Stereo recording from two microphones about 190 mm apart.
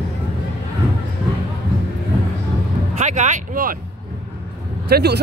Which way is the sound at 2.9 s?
40° right (ahead or behind).